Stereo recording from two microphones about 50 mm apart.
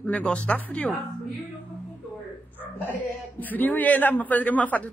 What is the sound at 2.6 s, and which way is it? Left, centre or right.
Speech, left.